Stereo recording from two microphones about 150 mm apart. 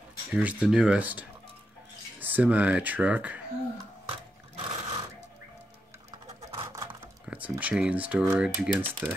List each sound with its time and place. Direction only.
0.3 s speech: 10° right (ahead or behind)
4.1 s sewing machine: 40° right (ahead or behind)
6.6 s a sound: 20° right (ahead or behind)
7.2 s speech: 10° right (ahead or behind)